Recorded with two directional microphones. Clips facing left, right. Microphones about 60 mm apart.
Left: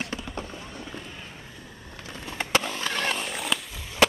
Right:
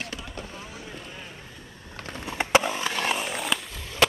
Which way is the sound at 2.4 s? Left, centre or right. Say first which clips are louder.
Right 4 dB; centre.